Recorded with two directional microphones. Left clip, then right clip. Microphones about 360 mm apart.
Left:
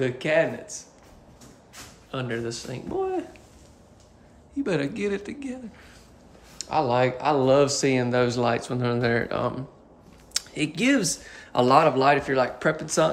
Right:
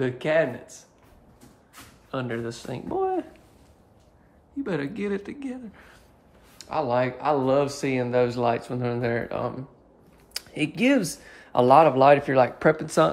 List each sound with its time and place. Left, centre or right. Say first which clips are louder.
0.0 s speech: even; centre
2.0 s speech: even; centre
4.6 s speech: left 3 dB; centre